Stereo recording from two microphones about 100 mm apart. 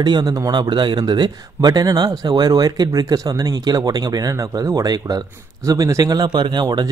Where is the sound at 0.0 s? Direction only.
45° right (ahead or behind).